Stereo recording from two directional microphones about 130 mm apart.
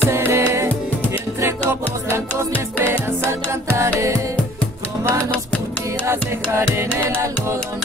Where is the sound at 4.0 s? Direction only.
20° right (ahead or behind).